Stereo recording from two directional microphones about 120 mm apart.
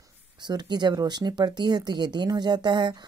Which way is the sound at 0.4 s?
35° right (ahead or behind).